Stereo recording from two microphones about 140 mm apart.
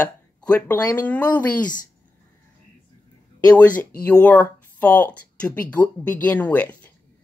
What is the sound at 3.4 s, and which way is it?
Speech, 10° left (ahead or behind).